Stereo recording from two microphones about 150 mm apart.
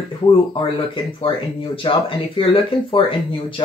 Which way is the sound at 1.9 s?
30° left (ahead or behind).